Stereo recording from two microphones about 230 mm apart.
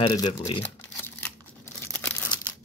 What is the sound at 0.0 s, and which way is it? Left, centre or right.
Speech, left.